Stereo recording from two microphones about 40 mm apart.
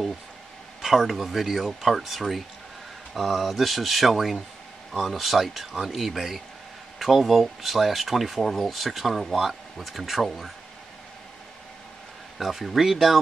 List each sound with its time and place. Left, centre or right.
0.8 s speech: centre
12.4 s speech: centre